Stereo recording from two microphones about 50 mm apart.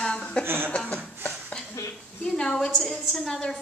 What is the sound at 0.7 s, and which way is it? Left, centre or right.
Chuckle, left.